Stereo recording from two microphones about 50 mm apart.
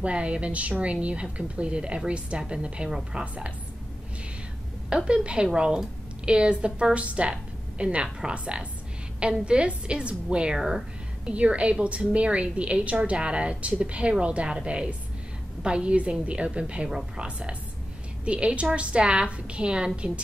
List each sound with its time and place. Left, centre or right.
0.0 s a woman's voice: right
4.8 s a woman's voice: right
11.2 s a woman's voice: right